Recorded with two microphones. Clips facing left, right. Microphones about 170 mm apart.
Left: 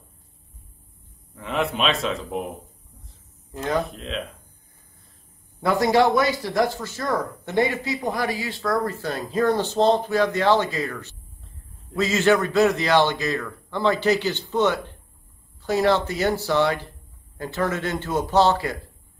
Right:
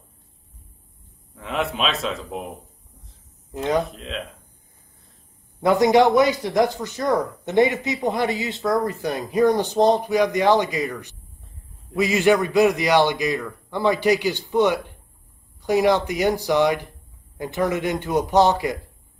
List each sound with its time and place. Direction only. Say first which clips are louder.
1.3 s a man's voice: left 1 dB; centre (ahead or behind)
3.5 s a man's voice: right 3 dB; 20° right (ahead or behind)
3.8 s a man's voice: left 1 dB; centre (ahead or behind)
5.6 s a man's voice: right 3 dB; 20° right (ahead or behind)